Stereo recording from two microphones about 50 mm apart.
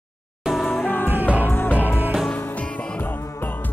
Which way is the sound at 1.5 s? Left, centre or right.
Left.